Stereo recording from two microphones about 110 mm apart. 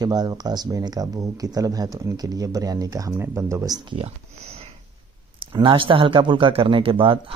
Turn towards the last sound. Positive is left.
turn(degrees=-55)  # may be behind; listen again after turning